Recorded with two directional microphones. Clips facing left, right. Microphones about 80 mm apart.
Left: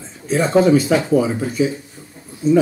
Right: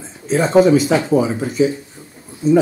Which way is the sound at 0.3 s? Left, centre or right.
Right.